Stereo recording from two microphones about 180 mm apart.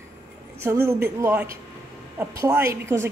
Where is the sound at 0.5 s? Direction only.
15° right (ahead or behind).